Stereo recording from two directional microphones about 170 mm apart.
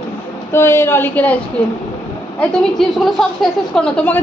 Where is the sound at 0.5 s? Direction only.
15° left (ahead or behind).